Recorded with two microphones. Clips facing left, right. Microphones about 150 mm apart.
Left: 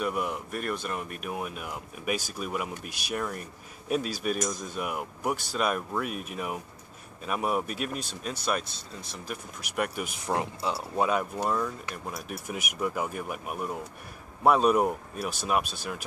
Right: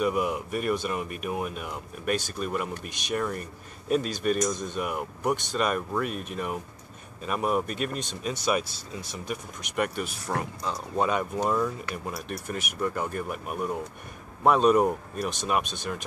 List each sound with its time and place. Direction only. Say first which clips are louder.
0.0 s speech: right 4 dB; centre (ahead or behind)
10.0 s speech: left 1 dB; 20° left (ahead or behind)
10.6 s speech: even; 5° left (ahead or behind)
12.3 s speech: right 2 dB; 10° left (ahead or behind)